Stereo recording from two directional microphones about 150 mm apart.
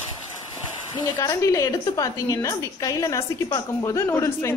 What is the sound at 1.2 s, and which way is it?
A woman's voice, 20° left (ahead or behind).